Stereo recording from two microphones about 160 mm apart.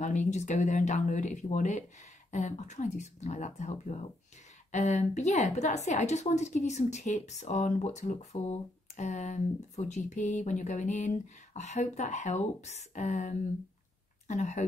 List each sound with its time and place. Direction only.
0.0 s a woman's voice: 45° left (ahead or behind)